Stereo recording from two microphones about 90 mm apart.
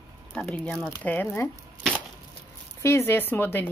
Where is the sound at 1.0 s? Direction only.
20° left (ahead or behind).